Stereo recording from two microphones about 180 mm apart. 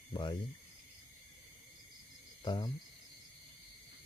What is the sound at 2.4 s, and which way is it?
Cricket, 25° left (ahead or behind).